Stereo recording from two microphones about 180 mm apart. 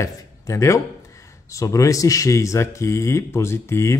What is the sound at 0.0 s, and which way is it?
Speech, 15° left (ahead or behind).